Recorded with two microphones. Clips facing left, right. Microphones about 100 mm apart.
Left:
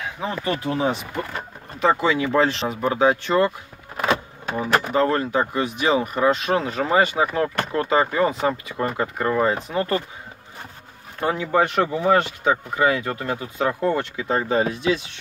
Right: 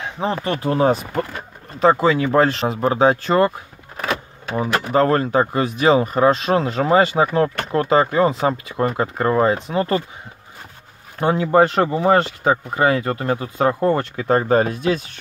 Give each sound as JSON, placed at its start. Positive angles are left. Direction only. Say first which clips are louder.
{"t": 0.0, "sound": "a sound", "louder": "right 5 dB", "side_deg": -30}
{"t": 0.7, "sound": "speech", "louder": "right 9 dB", "side_deg": -45}
{"t": 4.6, "sound": "speech", "louder": "right 2 dB", "side_deg": -40}
{"t": 11.1, "sound": "speech", "louder": "right 5 dB", "side_deg": -30}